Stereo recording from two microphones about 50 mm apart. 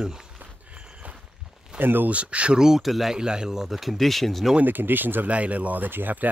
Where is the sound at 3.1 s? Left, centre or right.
Centre.